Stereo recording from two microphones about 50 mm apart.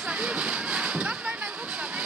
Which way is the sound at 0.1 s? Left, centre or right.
Right.